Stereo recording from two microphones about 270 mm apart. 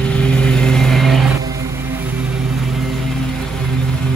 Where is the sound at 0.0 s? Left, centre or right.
Centre.